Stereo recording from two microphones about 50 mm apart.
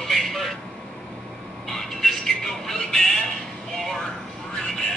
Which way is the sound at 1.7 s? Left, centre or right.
Centre.